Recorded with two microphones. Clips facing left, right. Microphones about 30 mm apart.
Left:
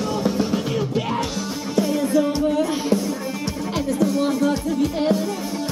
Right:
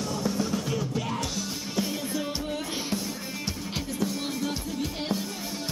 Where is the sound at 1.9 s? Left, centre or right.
Centre.